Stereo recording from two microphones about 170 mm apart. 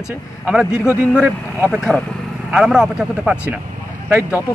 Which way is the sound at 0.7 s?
15° left (ahead or behind).